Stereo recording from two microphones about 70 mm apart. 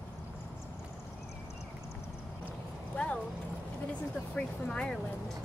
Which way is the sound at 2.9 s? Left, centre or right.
Centre.